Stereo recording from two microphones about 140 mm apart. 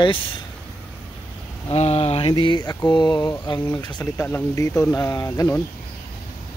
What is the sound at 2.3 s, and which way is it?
Speech, 30° left (ahead or behind).